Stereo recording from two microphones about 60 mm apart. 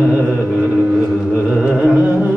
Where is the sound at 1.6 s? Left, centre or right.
Centre.